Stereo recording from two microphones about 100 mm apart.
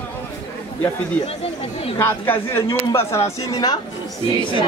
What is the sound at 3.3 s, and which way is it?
Speech, 40° left (ahead or behind).